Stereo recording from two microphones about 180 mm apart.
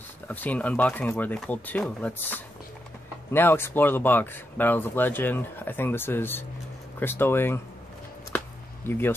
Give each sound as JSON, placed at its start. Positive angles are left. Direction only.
{"t": 0.3, "sound": "speech", "side_deg": 10}
{"t": 8.8, "sound": "speech", "side_deg": 10}